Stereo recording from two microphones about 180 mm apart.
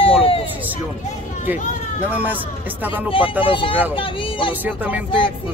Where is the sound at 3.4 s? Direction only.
30° left (ahead or behind).